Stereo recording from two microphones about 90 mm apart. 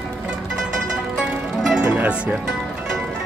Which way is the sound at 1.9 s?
15° right (ahead or behind).